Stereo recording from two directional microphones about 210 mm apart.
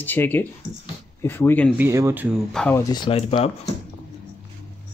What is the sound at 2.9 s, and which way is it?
Speech, 25° left (ahead or behind).